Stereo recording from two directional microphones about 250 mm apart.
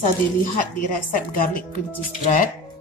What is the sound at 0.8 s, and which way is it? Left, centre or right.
Speech, left.